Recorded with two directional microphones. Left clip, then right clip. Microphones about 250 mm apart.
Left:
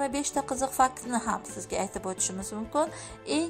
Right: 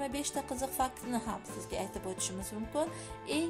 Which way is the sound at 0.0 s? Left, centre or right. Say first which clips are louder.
Left 7 dB; centre.